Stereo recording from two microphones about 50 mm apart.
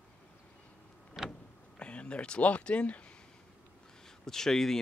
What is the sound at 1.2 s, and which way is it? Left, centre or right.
Vehicle, centre.